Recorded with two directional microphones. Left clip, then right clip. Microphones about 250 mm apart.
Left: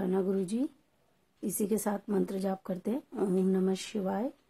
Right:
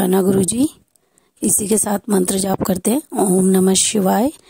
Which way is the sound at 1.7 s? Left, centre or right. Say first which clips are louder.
Right 14 dB; right.